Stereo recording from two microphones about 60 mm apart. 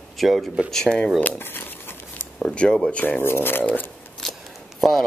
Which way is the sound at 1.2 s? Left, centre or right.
Left.